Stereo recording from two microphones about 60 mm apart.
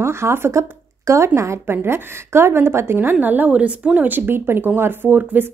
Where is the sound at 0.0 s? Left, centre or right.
Right.